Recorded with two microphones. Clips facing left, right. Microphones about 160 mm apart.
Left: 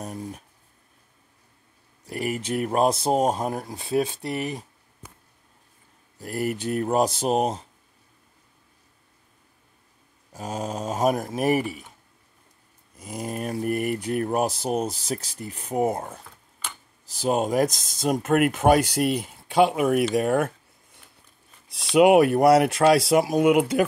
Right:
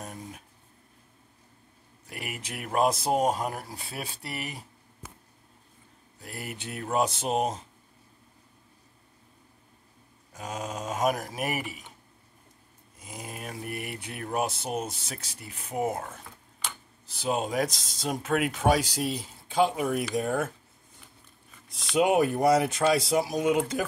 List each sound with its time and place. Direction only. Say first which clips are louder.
2.0 s speech: left 11 dB; 35° left (ahead or behind)
6.2 s speech: left 12 dB; 45° left (ahead or behind)
10.3 s speech: left 5 dB; 35° left (ahead or behind)
13.0 s speech: left 9 dB; 45° left (ahead or behind); by 20.1 s 70° left (ahead or behind)
20.2 s a sound: left 6 dB; 65° left (ahead or behind)
21.9 s speech: left 7 dB; 70° left (ahead or behind)